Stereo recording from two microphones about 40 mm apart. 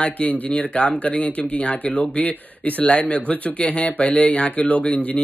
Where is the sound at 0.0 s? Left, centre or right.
Left.